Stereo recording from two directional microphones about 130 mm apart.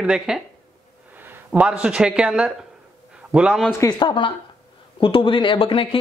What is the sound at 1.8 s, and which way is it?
A man's voice, 5° right (ahead or behind).